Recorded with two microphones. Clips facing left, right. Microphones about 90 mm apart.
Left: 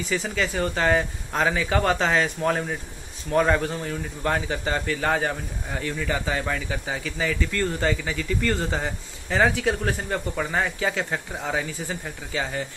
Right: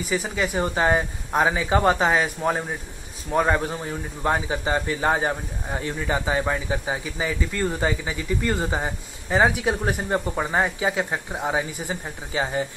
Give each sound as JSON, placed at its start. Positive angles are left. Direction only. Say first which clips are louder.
{"t": 0.0, "sound": "a man's voice", "louder": "right 1 dB", "side_deg": -10}